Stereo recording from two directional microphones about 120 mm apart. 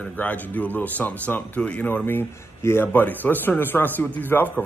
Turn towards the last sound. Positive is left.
turn(degrees=15)  # may be behind; listen again after turning